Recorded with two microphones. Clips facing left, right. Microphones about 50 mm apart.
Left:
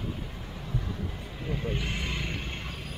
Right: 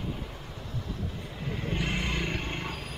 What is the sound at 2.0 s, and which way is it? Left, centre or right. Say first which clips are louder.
Vehicle: right 3 dB; centre.